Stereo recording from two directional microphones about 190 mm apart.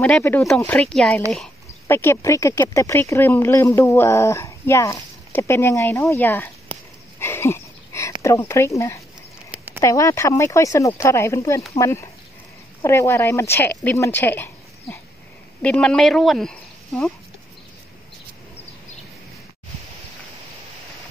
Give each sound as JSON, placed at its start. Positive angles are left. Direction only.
{"t": 0.0, "sound": "speech", "side_deg": 10}
{"t": 7.2, "sound": "a sound", "side_deg": 15}
{"t": 8.2, "sound": "speech", "side_deg": 15}